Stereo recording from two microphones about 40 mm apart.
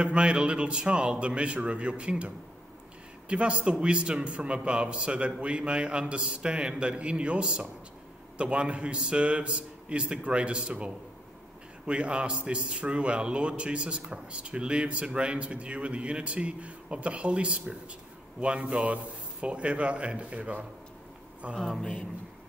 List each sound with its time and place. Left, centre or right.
0.0 s a man's voice: right